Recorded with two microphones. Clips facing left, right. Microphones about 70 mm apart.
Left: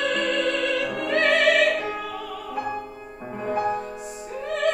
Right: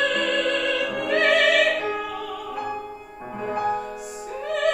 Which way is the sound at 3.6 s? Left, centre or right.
Centre.